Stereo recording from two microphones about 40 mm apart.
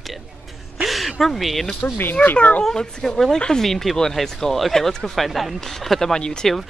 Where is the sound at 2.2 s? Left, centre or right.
Left.